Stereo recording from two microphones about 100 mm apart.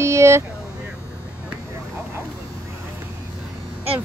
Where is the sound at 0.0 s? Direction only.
30° right (ahead or behind).